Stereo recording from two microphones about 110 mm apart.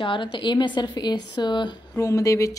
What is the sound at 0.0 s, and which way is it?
A woman's voice, 50° left (ahead or behind).